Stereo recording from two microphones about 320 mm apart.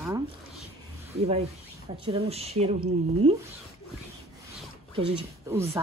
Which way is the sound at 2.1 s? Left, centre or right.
Centre.